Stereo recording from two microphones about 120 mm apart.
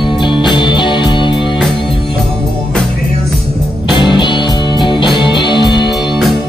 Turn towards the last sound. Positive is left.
turn(degrees=40)  # may be behind; listen again after turning